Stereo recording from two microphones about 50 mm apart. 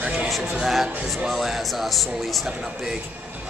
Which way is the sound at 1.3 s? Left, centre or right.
Centre.